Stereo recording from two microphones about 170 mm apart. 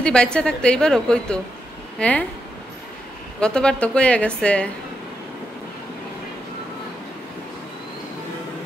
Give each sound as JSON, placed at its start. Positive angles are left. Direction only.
{"t": 0.0, "sound": "a woman's voice", "side_deg": 5}
{"t": 3.3, "sound": "a woman's voice", "side_deg": 5}